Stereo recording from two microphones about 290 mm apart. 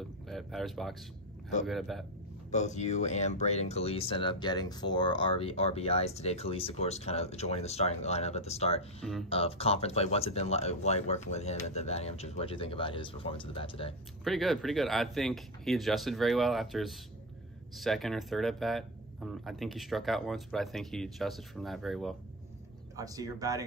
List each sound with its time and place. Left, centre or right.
0.3 s speech: centre
2.5 s speech: left
14.2 s speech: centre
22.9 s speech: centre